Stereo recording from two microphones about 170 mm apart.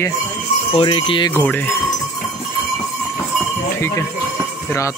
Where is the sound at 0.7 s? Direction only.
30° left (ahead or behind).